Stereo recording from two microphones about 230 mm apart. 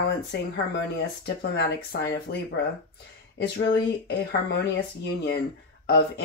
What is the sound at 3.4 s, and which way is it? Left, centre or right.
Speech, left.